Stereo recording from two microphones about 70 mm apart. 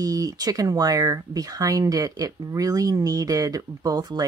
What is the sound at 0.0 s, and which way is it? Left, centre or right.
Speech, right.